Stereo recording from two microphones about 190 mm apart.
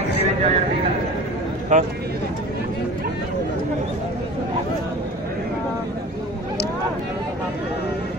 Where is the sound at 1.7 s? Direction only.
40° right (ahead or behind).